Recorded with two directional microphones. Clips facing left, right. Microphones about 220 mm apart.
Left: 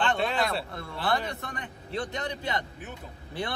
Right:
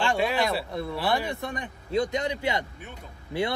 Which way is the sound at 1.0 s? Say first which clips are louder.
Even; 20° right (ahead or behind).